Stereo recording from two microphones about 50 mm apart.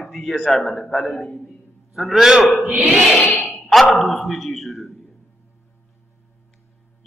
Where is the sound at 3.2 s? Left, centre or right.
Left.